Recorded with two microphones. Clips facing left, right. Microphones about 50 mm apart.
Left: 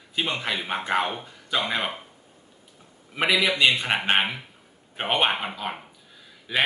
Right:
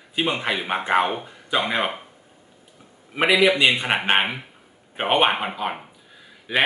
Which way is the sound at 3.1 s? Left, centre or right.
Centre.